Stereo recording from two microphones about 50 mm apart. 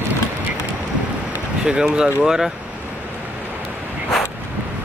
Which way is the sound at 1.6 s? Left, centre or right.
Centre.